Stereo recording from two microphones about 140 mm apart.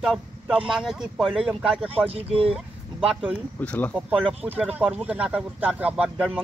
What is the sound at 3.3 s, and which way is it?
Speech, 10° left (ahead or behind).